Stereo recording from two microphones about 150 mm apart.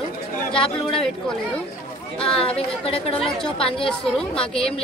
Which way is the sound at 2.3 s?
40° left (ahead or behind).